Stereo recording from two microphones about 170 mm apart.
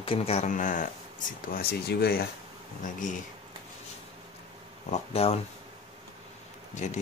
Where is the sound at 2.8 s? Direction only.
50° left (ahead or behind).